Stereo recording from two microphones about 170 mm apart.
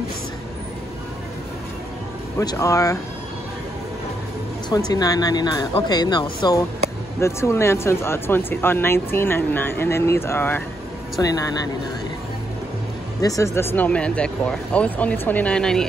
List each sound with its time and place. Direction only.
2.3 s speech: 20° left (ahead or behind)
4.6 s speech: 25° left (ahead or behind)
13.2 s speech: 20° left (ahead or behind); by 15.9 s 5° left (ahead or behind)